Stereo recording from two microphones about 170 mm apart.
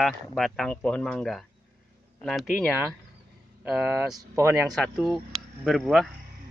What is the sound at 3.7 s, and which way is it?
Speech, 10° right (ahead or behind).